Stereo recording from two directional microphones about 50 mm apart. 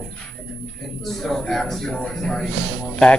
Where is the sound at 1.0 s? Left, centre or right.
Centre.